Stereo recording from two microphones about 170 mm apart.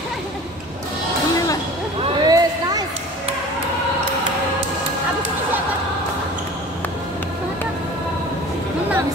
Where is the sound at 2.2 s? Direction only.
20° right (ahead or behind).